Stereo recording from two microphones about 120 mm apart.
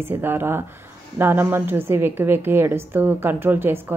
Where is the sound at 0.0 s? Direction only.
15° right (ahead or behind).